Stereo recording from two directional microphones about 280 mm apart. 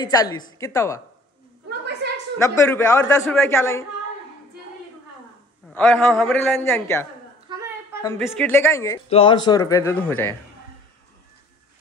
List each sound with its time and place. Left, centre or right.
0.0 s speech: centre
1.7 s a sound: right
2.3 s speech: centre
5.7 s a man's voice: centre
7.4 s a sound: centre
8.3 s speech: centre